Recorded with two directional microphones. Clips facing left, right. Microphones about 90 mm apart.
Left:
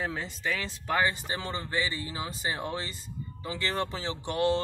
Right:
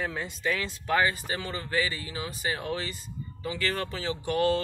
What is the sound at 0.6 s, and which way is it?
Speech, 30° left (ahead or behind).